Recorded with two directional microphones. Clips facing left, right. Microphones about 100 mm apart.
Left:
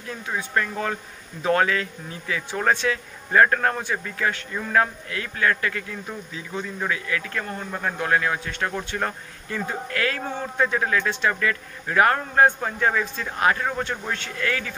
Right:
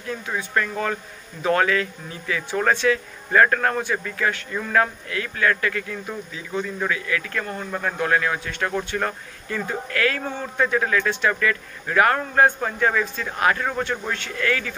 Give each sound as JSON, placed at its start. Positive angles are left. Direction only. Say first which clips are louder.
{"t": 0.4, "sound": "a man's voice", "louder": "right 1 dB", "side_deg": 25}
{"t": 5.1, "sound": "a man's voice", "louder": "right 1 dB", "side_deg": 25}